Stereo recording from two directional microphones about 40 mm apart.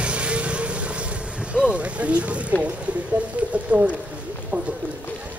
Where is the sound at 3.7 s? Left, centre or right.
Left.